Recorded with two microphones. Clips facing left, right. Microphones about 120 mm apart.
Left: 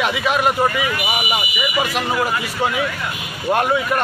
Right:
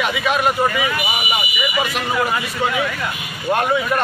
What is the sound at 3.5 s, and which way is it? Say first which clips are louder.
Speech: even; 15° left (ahead or behind).